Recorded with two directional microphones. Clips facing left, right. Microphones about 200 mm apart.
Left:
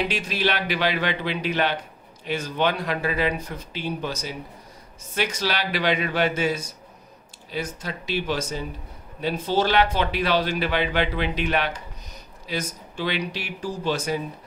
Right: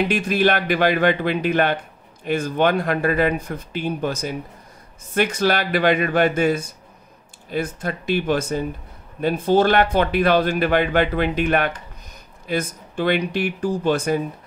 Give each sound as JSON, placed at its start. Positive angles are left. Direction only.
{"t": 0.0, "sound": "speech", "side_deg": -50}